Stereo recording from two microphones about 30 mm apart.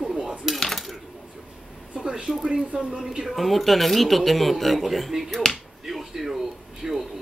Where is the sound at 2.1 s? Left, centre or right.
Centre.